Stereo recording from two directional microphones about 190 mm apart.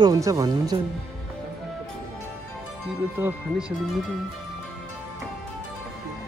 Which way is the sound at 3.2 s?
5° right (ahead or behind).